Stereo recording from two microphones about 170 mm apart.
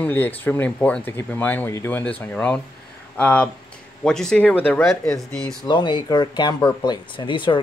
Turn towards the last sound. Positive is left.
turn(degrees=30)  # may be behind; listen again after turning